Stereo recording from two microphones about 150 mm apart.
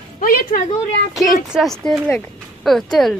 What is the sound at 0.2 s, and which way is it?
Speech, 70° left (ahead or behind).